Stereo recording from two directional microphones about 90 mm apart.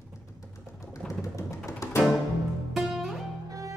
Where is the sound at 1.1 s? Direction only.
35° left (ahead or behind).